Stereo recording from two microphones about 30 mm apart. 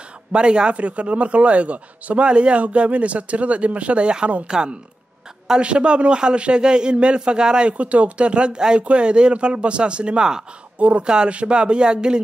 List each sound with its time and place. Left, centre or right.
0.3 s a man's voice: right
0.7 s speech: right
2.2 s a man's voice: right
2.6 s speech: right
4.5 s speech: right
5.6 s a man's voice: right
7.7 s a man's voice: right
10.8 s speech: right
11.2 s a man's voice: right